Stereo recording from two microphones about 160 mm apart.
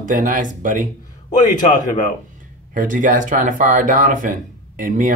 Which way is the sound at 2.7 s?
55° right (ahead or behind).